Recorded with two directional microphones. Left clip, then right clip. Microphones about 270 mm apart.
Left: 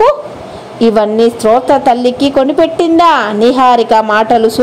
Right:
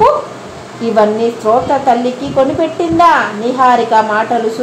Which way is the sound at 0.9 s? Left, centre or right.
Left.